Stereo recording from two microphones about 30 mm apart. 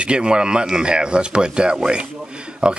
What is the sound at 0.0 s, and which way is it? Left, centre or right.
Speech, right.